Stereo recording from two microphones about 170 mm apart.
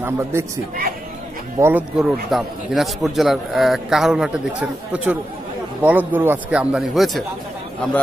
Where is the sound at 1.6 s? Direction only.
10° right (ahead or behind).